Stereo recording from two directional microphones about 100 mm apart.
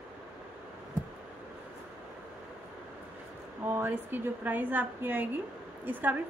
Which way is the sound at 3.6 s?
20° right (ahead or behind).